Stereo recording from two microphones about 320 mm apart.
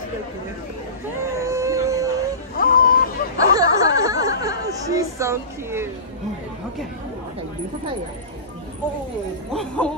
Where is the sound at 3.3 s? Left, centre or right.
Centre.